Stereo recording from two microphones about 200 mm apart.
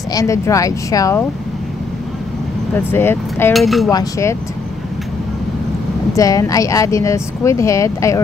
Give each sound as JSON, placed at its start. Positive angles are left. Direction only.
{"t": 0.1, "sound": "speech", "side_deg": 15}
{"t": 2.7, "sound": "speech", "side_deg": 10}
{"t": 3.5, "sound": "cutlery", "side_deg": 0}
{"t": 3.9, "sound": "speech", "side_deg": 15}
{"t": 6.1, "sound": "speech", "side_deg": 15}